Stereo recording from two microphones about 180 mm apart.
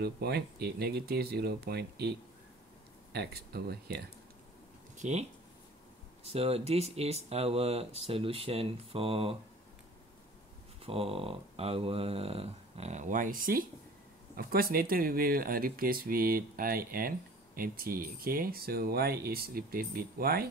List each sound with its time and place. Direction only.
0.0 s speech: 65° right (ahead or behind)
4.9 s speech: 40° right (ahead or behind)
6.2 s speech: 35° right (ahead or behind)
10.8 s speech: 30° right (ahead or behind); by 20.4 s 55° right (ahead or behind)